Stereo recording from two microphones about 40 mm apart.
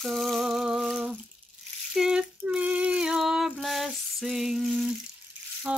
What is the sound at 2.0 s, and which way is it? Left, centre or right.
Ratchet, centre.